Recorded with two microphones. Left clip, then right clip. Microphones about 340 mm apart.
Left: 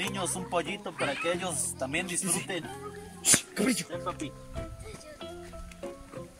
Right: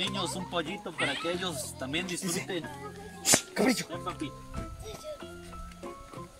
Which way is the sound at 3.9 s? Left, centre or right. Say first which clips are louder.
Left 1 dB; centre.